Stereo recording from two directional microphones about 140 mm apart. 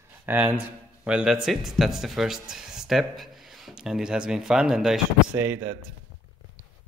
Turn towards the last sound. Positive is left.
turn(degrees=-15)  # may be behind; listen again after turning